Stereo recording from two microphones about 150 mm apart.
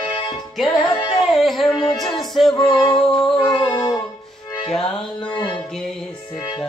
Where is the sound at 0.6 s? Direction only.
Centre (ahead or behind).